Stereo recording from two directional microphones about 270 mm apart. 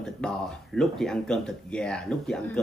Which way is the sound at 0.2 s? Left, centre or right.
Centre.